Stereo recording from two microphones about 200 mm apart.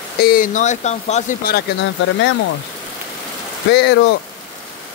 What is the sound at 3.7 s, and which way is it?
Speech, 60° left (ahead or behind).